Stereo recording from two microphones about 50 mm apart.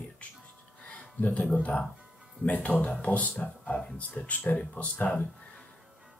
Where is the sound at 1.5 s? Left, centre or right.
Left.